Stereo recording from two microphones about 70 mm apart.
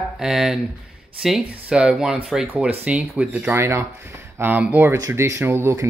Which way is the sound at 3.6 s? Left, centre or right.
Right.